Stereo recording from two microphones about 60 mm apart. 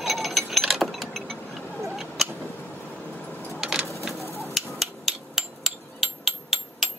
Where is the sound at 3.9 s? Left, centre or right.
Centre.